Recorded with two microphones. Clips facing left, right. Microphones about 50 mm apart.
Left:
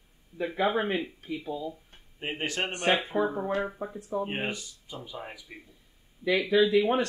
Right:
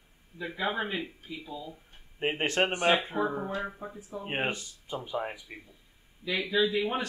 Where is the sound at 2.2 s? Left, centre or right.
Right.